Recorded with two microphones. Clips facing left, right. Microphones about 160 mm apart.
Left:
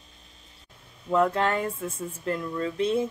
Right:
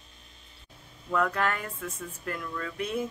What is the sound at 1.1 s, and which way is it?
Speech, 25° left (ahead or behind).